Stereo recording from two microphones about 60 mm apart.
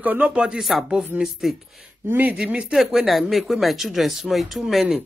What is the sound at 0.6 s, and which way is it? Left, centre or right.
Speech, centre.